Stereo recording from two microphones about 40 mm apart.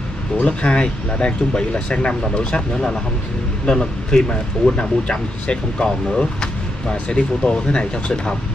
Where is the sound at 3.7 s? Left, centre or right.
Left.